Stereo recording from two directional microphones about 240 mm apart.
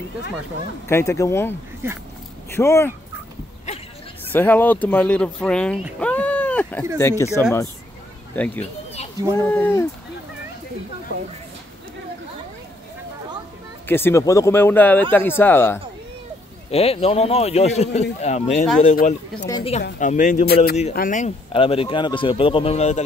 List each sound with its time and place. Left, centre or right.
0.8 s speech: centre
2.5 s speech: centre
4.3 s speech: centre
13.8 s speech: centre
16.7 s speech: left
19.4 s speech: centre
20.0 s a man's voice: left